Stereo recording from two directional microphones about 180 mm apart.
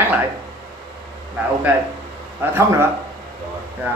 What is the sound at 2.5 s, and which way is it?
Speech, 15° right (ahead or behind).